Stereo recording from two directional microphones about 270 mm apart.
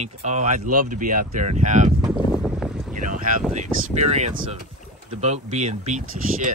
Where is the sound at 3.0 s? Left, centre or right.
Right.